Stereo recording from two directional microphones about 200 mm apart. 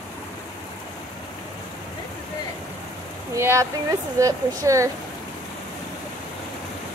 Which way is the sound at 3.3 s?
15° right (ahead or behind).